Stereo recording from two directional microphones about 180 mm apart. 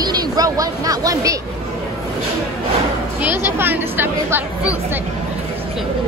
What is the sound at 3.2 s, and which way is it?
A woman's voice, 10° right (ahead or behind).